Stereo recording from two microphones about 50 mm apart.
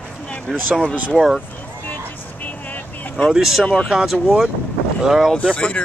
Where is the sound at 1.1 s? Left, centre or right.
Centre.